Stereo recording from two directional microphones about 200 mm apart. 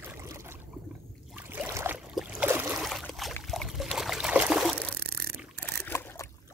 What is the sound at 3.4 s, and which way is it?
Trickle, centre (ahead or behind).